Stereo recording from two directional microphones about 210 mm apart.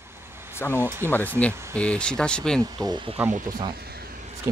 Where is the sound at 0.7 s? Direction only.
10° right (ahead or behind).